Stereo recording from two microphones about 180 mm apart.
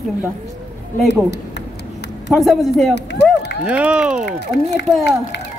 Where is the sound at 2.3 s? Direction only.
Centre (ahead or behind).